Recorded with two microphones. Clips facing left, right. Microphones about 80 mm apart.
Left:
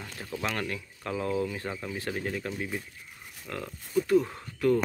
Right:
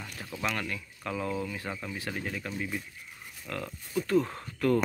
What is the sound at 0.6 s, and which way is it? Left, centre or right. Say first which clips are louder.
Speech: left 2 dB; left.